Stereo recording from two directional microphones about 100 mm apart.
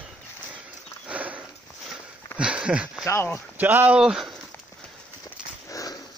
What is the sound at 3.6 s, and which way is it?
Speech, 20° right (ahead or behind).